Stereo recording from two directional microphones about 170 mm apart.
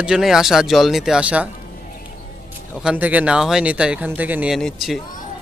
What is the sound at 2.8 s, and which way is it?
Speech, 5° right (ahead or behind).